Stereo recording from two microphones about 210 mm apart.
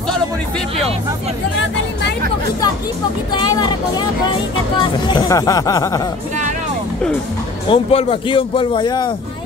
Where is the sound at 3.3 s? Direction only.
20° left (ahead or behind).